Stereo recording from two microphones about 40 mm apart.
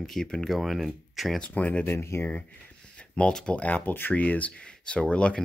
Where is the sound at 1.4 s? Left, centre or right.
Left.